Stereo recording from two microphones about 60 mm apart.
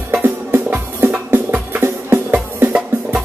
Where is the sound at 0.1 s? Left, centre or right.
Right.